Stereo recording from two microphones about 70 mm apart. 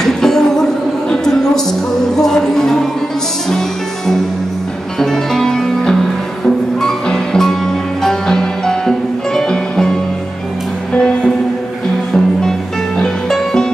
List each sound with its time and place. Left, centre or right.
0.0 s music: centre
1.1 s a sound: centre
2.1 s music: centre
4.9 s music: centre
13.0 s music: centre